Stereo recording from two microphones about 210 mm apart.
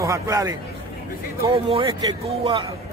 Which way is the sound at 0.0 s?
15° right (ahead or behind).